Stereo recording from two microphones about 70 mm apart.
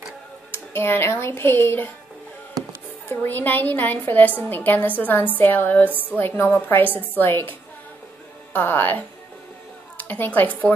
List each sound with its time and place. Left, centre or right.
0.5 s speech: left
3.1 s a woman's voice: left
8.5 s a woman's voice: left